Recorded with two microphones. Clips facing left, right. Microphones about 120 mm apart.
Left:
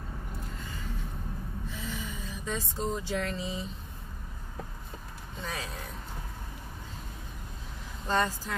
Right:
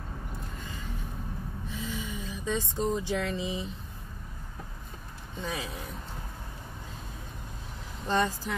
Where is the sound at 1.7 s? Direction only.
20° right (ahead or behind).